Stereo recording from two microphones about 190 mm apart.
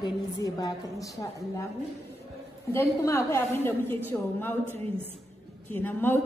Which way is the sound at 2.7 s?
15° left (ahead or behind).